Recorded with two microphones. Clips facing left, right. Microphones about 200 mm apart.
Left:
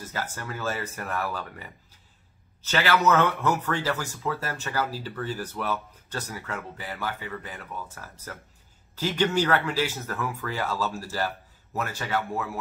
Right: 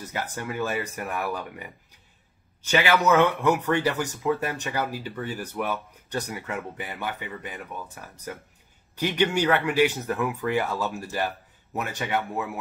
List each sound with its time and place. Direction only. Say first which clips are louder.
0.1 s speech: right 3 dB; 15° right (ahead or behind)
2.7 s speech: right 2 dB; 15° right (ahead or behind)